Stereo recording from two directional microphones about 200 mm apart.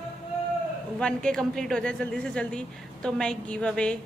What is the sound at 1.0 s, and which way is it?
A woman's voice, 5° left (ahead or behind).